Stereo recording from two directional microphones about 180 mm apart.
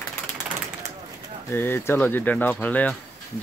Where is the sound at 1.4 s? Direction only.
10° left (ahead or behind).